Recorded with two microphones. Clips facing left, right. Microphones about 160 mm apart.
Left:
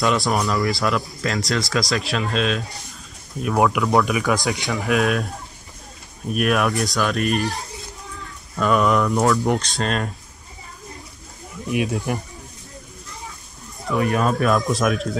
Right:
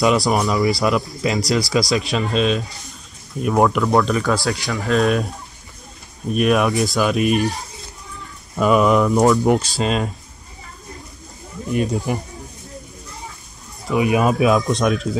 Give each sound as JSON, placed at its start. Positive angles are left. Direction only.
{"t": 0.0, "sound": "speech", "side_deg": 0}
{"t": 4.9, "sound": "speech", "side_deg": 0}
{"t": 8.5, "sound": "speech", "side_deg": -5}
{"t": 9.2, "sound": "speech", "side_deg": -20}
{"t": 9.5, "sound": "speech", "side_deg": -5}
{"t": 11.7, "sound": "speech", "side_deg": 5}
{"t": 13.9, "sound": "speech", "side_deg": -10}